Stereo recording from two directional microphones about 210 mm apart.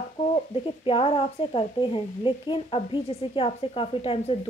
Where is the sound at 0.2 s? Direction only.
25° left (ahead or behind).